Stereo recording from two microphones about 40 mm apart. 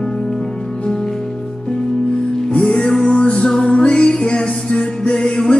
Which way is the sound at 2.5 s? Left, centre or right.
Left.